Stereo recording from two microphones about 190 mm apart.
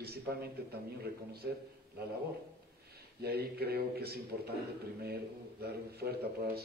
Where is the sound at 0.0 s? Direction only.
55° right (ahead or behind).